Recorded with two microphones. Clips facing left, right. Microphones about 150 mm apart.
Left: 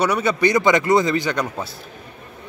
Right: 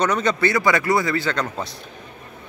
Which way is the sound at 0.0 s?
10° left (ahead or behind).